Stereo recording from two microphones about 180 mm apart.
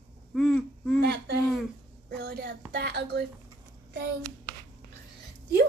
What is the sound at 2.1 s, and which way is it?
A woman's voice, 55° right (ahead or behind).